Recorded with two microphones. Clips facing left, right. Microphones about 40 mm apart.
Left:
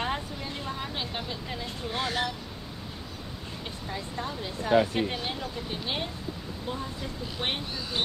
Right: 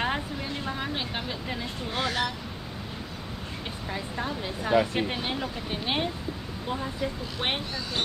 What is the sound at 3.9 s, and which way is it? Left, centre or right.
Speech, centre.